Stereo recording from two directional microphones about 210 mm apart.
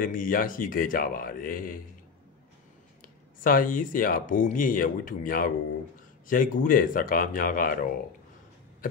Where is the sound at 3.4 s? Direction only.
40° left (ahead or behind).